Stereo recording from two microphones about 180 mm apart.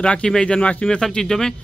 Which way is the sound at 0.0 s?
5° left (ahead or behind).